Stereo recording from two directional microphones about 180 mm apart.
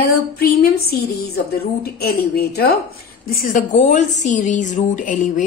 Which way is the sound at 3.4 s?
45° left (ahead or behind).